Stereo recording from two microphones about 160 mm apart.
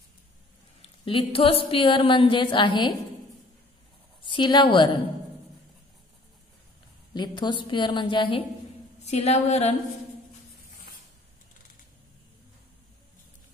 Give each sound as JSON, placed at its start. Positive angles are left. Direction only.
{"t": 1.0, "sound": "a woman's voice", "side_deg": 35}
{"t": 4.2, "sound": "a woman's voice", "side_deg": 30}
{"t": 7.2, "sound": "a woman's voice", "side_deg": 30}